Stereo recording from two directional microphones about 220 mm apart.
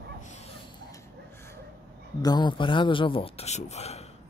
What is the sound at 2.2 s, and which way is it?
A man's voice, 20° left (ahead or behind).